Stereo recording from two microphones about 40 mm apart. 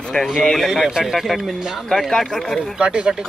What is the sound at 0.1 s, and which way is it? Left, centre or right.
Speech, centre.